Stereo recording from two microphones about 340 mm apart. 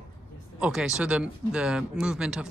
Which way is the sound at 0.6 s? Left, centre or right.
Centre.